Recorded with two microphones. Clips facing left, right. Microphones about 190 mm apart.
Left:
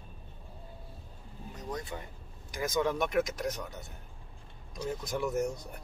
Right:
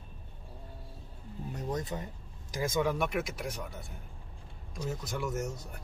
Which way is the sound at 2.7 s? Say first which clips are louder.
Left 2 dB; 10° right (ahead or behind).